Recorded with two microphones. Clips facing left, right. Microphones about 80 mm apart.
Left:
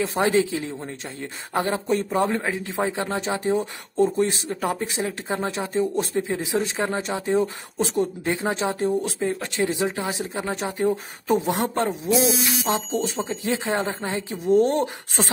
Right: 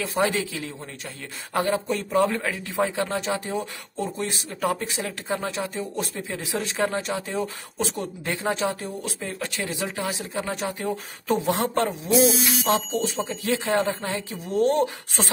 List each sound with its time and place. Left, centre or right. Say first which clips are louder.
0.0 s a man's voice: left 4 dB; left